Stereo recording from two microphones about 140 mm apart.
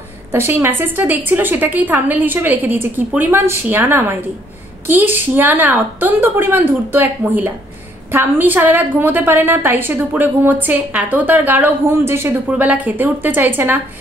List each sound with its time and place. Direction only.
0.3 s a woman's voice: 15° right (ahead or behind)